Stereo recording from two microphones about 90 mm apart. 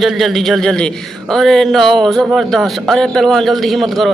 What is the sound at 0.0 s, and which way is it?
A man's voice, centre (ahead or behind).